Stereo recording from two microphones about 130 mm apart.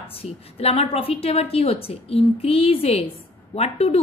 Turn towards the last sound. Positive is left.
turn(degrees=50)  # may be behind; listen again after turning